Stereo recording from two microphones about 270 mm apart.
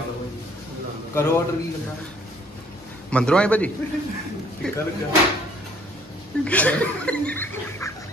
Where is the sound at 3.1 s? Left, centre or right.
Centre.